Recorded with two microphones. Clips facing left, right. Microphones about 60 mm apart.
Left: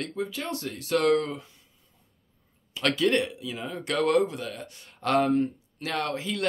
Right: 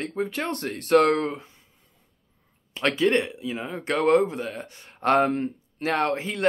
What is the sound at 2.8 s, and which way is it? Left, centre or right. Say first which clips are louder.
Speech: right 2 dB; right.